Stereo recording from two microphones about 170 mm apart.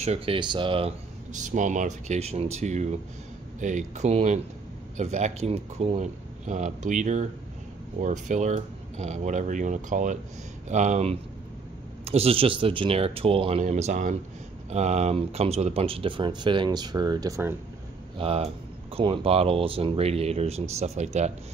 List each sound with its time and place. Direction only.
0.0 s speech: 35° right (ahead or behind)
1.3 s speech: 45° right (ahead or behind); by 17.6 s 15° right (ahead or behind)
18.1 s speech: 35° right (ahead or behind)